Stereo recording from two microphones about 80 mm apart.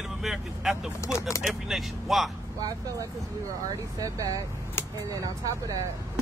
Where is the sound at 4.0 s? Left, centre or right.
Right.